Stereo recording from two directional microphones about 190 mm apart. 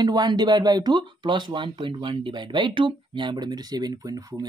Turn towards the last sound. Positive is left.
turn(degrees=-20)  # may be behind; listen again after turning